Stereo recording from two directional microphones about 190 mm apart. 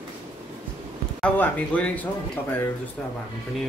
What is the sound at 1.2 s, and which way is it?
Speech, 5° left (ahead or behind).